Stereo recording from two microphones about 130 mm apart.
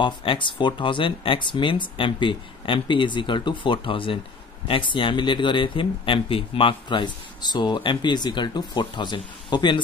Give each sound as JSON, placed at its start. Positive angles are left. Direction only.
{"t": 0.0, "sound": "speech", "side_deg": 40}